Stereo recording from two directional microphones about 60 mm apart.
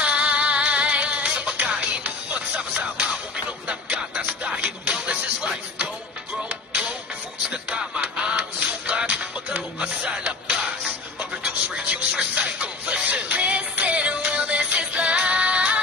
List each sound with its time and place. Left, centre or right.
0.0 s music: centre
7.8 s music: centre